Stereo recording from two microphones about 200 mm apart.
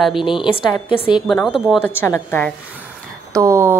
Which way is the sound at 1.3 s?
5° left (ahead or behind).